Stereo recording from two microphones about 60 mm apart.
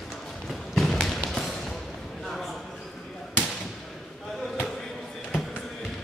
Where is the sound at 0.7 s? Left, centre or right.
Centre.